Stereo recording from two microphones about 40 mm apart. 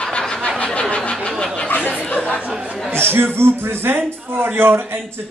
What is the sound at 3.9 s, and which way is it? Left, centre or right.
Speech, right.